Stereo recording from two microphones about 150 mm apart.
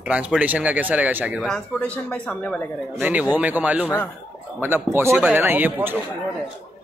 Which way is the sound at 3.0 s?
10° right (ahead or behind).